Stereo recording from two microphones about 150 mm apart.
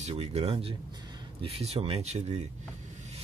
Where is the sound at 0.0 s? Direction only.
45° right (ahead or behind).